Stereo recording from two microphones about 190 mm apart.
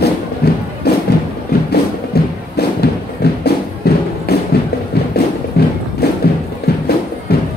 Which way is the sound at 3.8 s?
55° left (ahead or behind).